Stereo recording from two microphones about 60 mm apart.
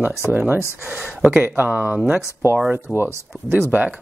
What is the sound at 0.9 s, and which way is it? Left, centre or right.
Speech, centre.